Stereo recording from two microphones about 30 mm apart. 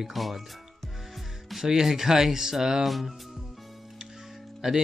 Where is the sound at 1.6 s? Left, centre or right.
Centre.